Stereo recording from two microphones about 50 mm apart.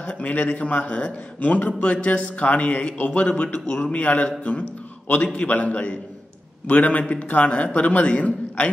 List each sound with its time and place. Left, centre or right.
0.0 s a man's voice: left